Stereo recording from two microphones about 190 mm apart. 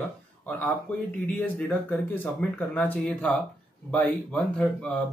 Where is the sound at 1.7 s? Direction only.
10° left (ahead or behind).